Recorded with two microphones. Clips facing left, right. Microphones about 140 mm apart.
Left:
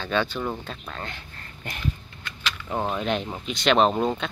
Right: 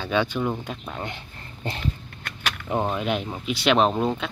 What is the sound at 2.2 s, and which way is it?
Keys jangling, 55° right (ahead or behind).